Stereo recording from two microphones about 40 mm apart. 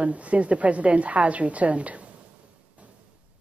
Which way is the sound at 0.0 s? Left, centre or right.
Right.